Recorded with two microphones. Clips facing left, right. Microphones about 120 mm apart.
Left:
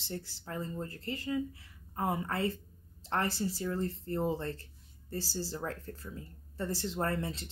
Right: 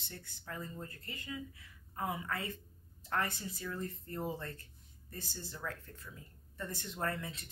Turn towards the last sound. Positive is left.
turn(degrees=30)  # may be behind; listen again after turning